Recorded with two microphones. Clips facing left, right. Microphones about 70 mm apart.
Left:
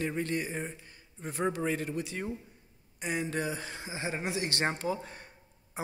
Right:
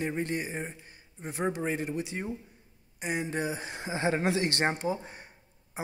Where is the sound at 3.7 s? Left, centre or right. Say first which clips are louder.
Right 7 dB; right.